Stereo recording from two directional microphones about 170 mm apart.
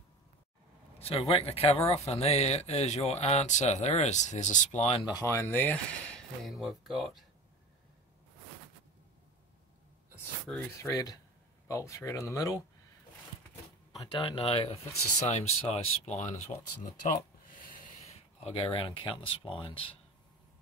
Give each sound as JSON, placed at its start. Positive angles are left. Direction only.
{"t": 0.9, "sound": "speech", "side_deg": 35}
{"t": 5.0, "sound": "speech", "side_deg": 20}
{"t": 10.8, "sound": "speech", "side_deg": 20}
{"t": 13.9, "sound": "speech", "side_deg": 30}
{"t": 18.0, "sound": "speech", "side_deg": 35}